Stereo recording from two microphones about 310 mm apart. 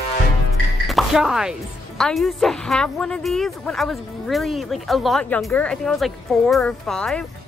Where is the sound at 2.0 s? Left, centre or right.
Centre.